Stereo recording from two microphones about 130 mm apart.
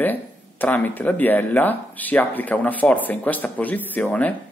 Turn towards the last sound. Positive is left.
turn(degrees=10)  # may be behind; listen again after turning